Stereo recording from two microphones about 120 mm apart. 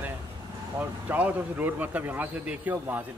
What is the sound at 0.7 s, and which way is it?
A man's voice, 15° right (ahead or behind).